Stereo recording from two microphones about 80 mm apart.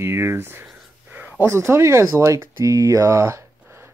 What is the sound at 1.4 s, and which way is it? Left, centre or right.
Speech, right.